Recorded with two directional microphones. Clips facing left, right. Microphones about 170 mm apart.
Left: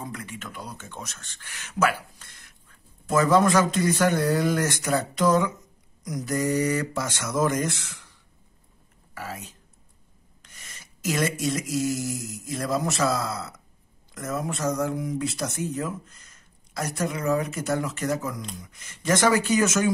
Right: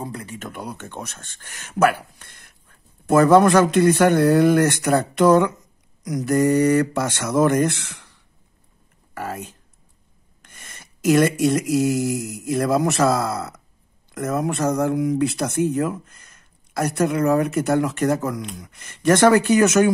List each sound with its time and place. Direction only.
0.0 s speech: 35° right (ahead or behind)
0.4 s speech: 60° right (ahead or behind)
9.1 s speech: 55° right (ahead or behind)
10.4 s mantra: 55° right (ahead or behind)
14.1 s speech: 60° right (ahead or behind)